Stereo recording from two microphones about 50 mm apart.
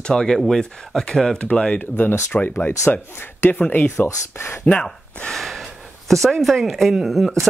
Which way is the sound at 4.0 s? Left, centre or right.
Left.